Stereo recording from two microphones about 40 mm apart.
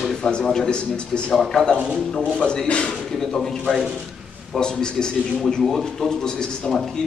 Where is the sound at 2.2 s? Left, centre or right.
Centre.